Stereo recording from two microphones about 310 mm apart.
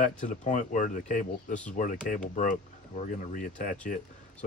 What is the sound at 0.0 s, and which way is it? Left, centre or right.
Speech, left.